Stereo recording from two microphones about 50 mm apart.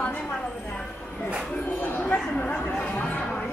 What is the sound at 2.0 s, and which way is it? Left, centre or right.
Chatter, left.